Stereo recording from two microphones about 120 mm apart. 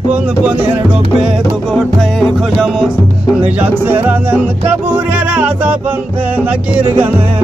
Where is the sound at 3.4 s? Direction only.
10° right (ahead or behind).